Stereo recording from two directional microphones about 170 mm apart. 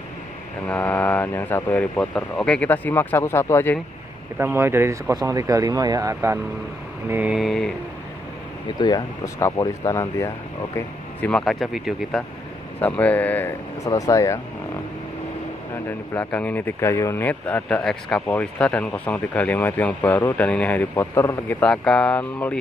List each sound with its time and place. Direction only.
0.7 s a man's voice: 10° left (ahead or behind)
4.4 s speech: 15° right (ahead or behind)
8.7 s speech: 25° left (ahead or behind)
11.1 s a man's voice: 5° left (ahead or behind)
13.8 s speech: 20° left (ahead or behind)
16.2 s a man's voice: 10° left (ahead or behind)